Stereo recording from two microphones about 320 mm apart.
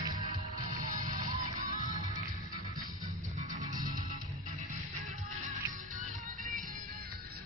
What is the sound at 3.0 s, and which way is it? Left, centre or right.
Music, right.